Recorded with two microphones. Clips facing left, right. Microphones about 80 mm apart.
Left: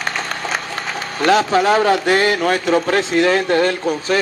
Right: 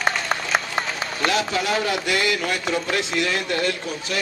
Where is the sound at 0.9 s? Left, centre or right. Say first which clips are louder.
Left 10 dB; left.